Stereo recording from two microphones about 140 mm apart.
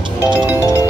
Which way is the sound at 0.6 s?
20° left (ahead or behind).